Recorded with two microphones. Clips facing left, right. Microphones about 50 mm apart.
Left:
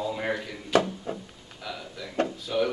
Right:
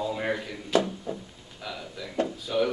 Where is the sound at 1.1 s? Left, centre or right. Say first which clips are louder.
Even; left.